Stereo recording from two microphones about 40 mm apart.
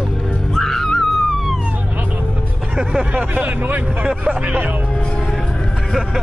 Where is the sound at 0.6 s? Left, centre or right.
Centre.